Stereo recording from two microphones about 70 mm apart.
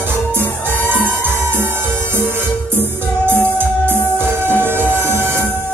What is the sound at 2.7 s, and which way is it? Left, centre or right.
Music, right.